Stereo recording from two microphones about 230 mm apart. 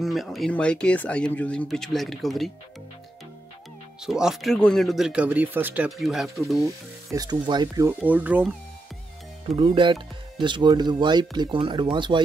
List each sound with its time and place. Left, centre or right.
0.0 s speech: centre
4.0 s speech: centre
7.1 s speech: centre
9.6 s speech: right